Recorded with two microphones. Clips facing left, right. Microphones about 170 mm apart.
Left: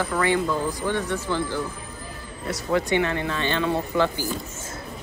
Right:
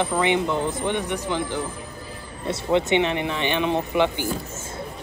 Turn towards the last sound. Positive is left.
turn(degrees=-20)  # may be behind; listen again after turning